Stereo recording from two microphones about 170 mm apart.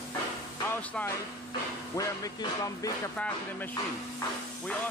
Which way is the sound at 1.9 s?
20° left (ahead or behind).